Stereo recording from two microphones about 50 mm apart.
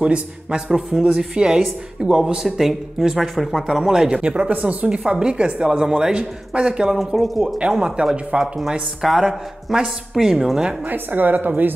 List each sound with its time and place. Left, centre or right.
0.0 s a man's voice: right
0.7 s a man's voice: centre
4.5 s a woman's voice: right
4.8 s speech: centre
7.2 s speech: centre
7.4 s speech: centre
10.9 s a woman's voice: right